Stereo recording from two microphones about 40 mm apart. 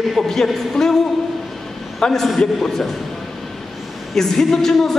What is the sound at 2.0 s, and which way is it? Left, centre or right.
Speech, centre.